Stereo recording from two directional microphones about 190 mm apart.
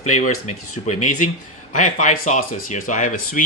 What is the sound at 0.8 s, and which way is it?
Speech, 40° left (ahead or behind).